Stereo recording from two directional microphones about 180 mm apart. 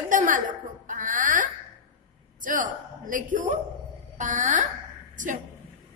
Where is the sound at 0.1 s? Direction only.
50° right (ahead or behind).